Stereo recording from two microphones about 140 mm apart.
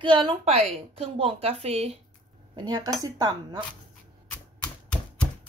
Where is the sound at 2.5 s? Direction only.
30° right (ahead or behind).